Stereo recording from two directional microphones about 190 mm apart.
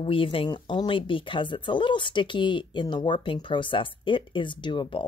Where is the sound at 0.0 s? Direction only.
25° left (ahead or behind).